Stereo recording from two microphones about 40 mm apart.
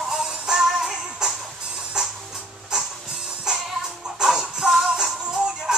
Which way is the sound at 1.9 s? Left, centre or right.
Centre.